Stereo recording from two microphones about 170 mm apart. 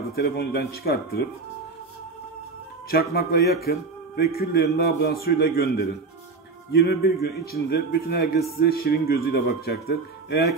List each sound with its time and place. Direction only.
0.1 s a man's voice: 70° left (ahead or behind)
2.9 s a man's voice: 65° left (ahead or behind)